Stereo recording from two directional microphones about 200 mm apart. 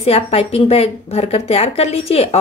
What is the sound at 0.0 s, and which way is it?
A woman's voice, 30° left (ahead or behind).